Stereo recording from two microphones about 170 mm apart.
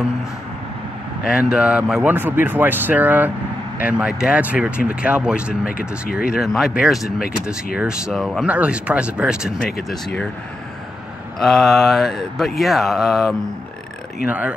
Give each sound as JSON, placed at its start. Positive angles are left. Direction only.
{"t": 1.3, "sound": "speech", "side_deg": -5}
{"t": 5.7, "sound": "speech", "side_deg": 60}
{"t": 6.2, "sound": "speech", "side_deg": 0}
{"t": 7.2, "sound": "speech", "side_deg": 60}
{"t": 8.1, "sound": "speech", "side_deg": 0}
{"t": 11.3, "sound": "speech", "side_deg": 0}